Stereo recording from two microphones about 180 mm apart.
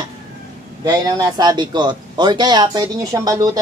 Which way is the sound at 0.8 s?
25° right (ahead or behind).